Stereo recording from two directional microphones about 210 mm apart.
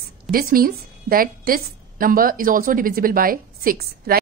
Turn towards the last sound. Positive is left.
turn(degrees=-45)  # may be behind; listen again after turning